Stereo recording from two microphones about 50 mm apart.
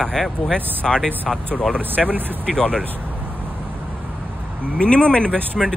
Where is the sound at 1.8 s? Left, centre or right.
Right.